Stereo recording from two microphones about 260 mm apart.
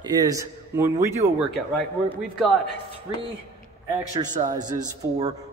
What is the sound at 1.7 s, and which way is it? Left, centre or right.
Speech, centre.